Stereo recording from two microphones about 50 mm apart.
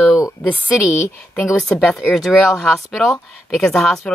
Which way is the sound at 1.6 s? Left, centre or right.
Centre.